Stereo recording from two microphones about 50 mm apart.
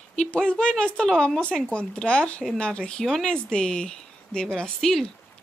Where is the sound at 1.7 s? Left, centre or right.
Left.